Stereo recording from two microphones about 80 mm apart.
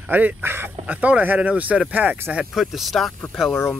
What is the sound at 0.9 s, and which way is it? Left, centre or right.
Speech, centre.